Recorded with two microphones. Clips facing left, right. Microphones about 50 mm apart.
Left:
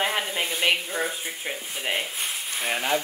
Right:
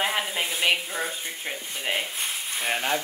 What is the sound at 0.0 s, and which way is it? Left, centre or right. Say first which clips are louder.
Speech: even; centre.